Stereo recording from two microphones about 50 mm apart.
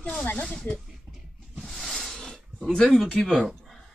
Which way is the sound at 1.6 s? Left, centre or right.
Centre.